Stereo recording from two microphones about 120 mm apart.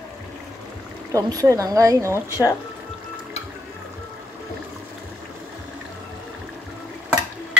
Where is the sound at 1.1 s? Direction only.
30° right (ahead or behind).